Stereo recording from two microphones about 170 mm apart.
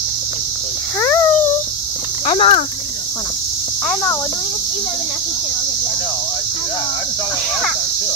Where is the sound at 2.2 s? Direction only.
30° left (ahead or behind).